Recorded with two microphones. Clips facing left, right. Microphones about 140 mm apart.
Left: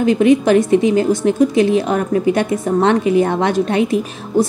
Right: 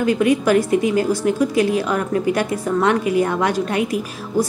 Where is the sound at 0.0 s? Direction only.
20° left (ahead or behind).